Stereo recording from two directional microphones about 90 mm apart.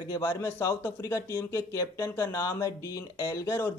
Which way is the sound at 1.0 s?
40° left (ahead or behind).